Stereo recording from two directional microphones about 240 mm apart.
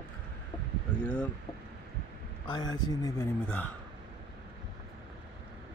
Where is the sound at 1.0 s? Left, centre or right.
Centre.